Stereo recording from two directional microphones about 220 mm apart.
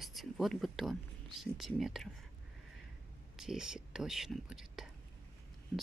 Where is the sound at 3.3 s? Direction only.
5° right (ahead or behind).